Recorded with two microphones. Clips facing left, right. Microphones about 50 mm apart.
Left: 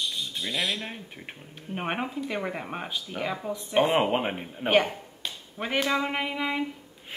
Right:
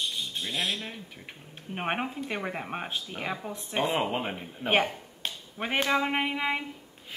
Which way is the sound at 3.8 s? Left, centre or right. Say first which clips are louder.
Left 5 dB; left.